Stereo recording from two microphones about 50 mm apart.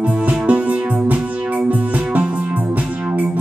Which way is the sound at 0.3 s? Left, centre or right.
Right.